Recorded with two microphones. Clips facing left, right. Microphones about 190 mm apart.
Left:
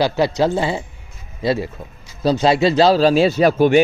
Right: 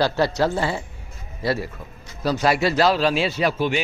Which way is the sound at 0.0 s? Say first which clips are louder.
Left 3 dB; 15° left (ahead or behind).